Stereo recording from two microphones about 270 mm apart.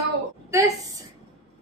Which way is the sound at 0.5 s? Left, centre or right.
Centre.